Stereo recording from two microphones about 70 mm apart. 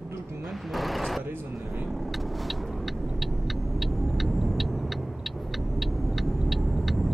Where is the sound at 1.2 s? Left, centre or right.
Right.